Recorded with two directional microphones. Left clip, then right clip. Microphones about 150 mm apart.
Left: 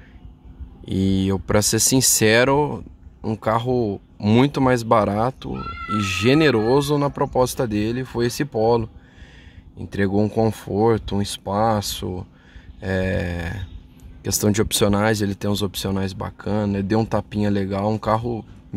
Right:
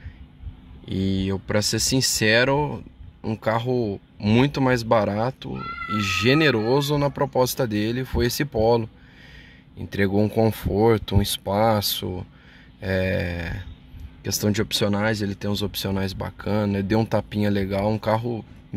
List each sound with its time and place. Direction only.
0.8 s speech: 25° left (ahead or behind); by 18.4 s 10° left (ahead or behind)